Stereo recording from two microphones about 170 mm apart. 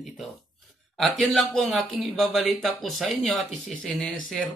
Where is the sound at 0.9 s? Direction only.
Centre (ahead or behind).